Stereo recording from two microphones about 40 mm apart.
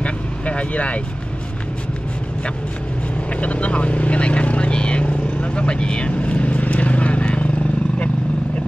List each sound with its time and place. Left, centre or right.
0.0 s vehicle: left
3.3 s vehicle: left